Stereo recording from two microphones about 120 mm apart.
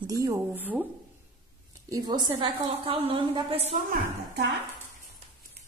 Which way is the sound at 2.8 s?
50° right (ahead or behind).